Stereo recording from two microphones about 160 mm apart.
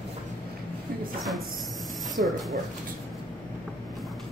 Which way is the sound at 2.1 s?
Centre (ahead or behind).